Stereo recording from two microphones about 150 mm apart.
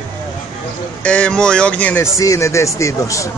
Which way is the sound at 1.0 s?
10° left (ahead or behind).